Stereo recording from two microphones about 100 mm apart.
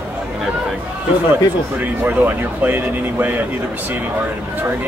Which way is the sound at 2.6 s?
15° right (ahead or behind).